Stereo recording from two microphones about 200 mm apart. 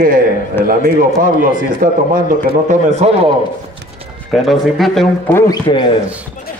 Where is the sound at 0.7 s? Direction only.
45° right (ahead or behind).